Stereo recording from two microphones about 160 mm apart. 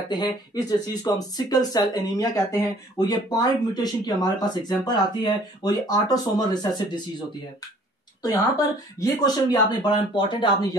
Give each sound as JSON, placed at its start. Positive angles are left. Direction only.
{"t": 0.1, "sound": "speech", "side_deg": 25}
{"t": 8.2, "sound": "speech", "side_deg": 20}